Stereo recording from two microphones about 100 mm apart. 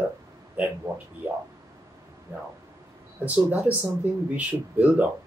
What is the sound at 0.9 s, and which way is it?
Speech, 30° right (ahead or behind).